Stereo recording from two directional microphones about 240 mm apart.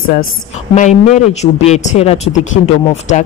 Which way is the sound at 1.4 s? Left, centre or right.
Left.